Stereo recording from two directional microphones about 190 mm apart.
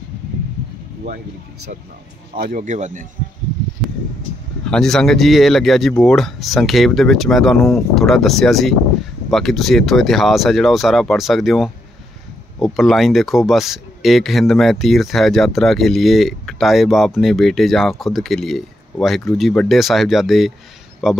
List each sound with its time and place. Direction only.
2.3 s speech: 45° right (ahead or behind)
4.6 s speech: centre (ahead or behind)